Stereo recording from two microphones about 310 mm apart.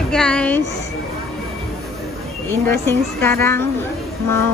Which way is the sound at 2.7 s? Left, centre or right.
Centre.